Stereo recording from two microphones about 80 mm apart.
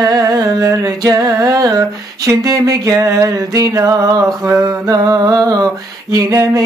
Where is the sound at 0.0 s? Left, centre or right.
Right.